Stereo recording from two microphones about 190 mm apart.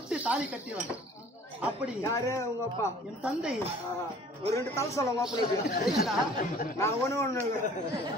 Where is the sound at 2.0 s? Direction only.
15° left (ahead or behind).